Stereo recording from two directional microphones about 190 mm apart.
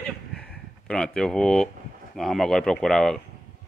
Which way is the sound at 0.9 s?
5° left (ahead or behind).